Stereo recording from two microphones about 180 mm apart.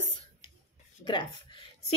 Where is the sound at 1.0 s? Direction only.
25° left (ahead or behind).